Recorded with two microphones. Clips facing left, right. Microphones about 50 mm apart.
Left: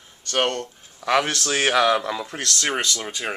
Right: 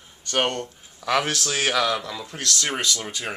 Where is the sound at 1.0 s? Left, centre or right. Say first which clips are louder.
Left 2 dB; centre.